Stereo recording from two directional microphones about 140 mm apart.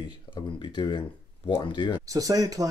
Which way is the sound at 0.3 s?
35° left (ahead or behind).